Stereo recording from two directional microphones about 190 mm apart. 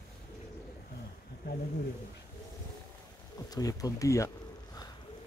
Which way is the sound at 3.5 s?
20° left (ahead or behind).